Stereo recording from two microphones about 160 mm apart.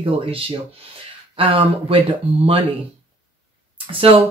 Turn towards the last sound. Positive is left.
turn(degrees=-35)  # may be behind; listen again after turning